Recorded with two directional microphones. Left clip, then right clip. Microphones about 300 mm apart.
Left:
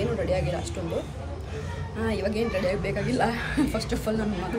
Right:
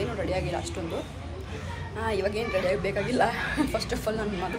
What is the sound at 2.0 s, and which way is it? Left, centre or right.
Speech, centre.